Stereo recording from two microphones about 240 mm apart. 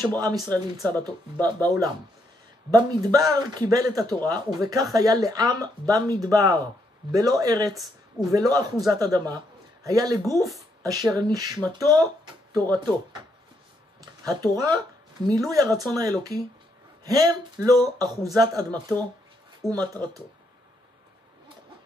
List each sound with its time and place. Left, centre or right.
0.0 s speech: centre
14.2 s speech: centre